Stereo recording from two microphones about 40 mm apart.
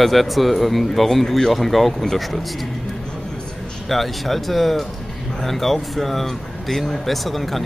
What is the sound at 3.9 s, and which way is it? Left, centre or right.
Speech, centre.